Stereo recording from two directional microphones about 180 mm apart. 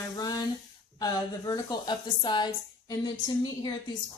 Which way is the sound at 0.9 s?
20° left (ahead or behind).